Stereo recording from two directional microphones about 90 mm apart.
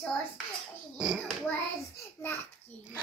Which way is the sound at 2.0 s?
25° left (ahead or behind).